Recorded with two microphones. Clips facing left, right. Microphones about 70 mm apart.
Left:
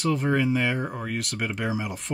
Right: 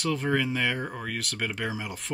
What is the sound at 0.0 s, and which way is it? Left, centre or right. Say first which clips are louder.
Speech: left 3 dB; centre.